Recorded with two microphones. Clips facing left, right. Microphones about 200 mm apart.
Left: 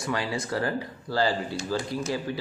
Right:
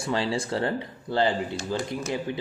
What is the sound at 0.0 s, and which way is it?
Speech, 30° right (ahead or behind).